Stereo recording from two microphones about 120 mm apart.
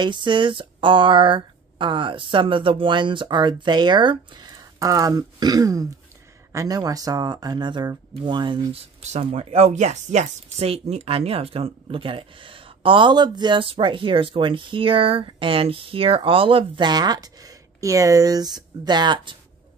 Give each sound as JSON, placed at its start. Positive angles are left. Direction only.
{"t": 0.0, "sound": "speech", "side_deg": -40}
{"t": 9.0, "sound": "speech", "side_deg": -70}